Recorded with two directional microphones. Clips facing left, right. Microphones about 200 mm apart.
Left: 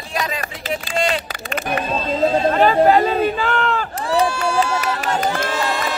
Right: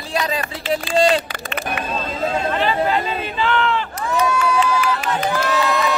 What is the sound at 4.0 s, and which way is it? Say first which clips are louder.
Crowd: left 2 dB; 30° left (ahead or behind).